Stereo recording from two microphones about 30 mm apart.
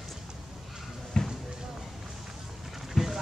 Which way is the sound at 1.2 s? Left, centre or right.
Left.